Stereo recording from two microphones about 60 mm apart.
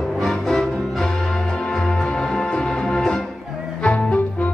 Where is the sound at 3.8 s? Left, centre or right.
Left.